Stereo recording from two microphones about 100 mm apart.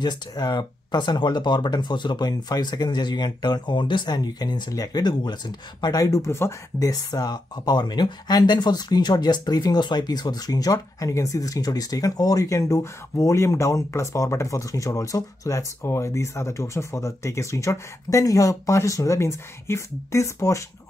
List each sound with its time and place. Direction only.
0.0 s speech: 45° left (ahead or behind)